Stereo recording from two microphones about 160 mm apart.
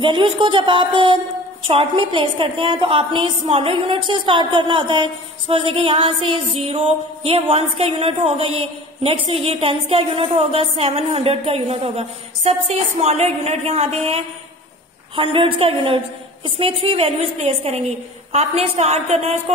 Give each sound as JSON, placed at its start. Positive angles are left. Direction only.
{"t": 0.0, "sound": "a woman's voice", "side_deg": -30}